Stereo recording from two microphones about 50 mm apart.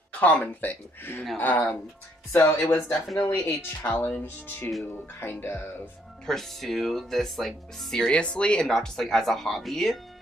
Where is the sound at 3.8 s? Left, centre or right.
Left.